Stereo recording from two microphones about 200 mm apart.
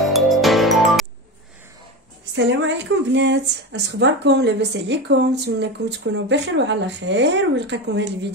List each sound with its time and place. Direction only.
0.1 s music: centre (ahead or behind)
2.3 s a woman's voice: 65° right (ahead or behind)